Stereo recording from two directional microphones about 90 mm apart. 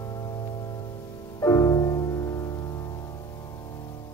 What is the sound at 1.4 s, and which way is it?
Music, 35° left (ahead or behind).